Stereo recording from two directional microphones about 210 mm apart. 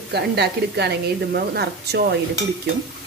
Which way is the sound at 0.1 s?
50° right (ahead or behind).